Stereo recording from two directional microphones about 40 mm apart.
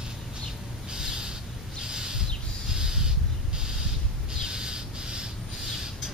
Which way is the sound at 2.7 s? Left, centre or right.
Centre.